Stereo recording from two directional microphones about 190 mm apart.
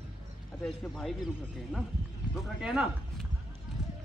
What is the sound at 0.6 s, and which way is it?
A man's voice, centre (ahead or behind).